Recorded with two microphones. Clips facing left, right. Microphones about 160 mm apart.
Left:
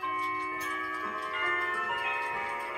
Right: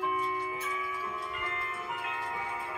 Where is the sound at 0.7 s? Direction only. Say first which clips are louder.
Right 1 dB; 65° left (ahead or behind).